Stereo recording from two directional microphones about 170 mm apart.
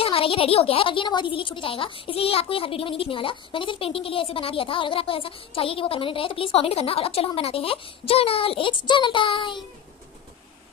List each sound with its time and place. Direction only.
0.0 s a woman's voice: 35° left (ahead or behind)